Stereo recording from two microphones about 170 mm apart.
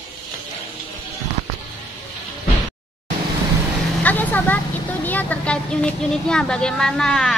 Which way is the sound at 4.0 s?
10° left (ahead or behind).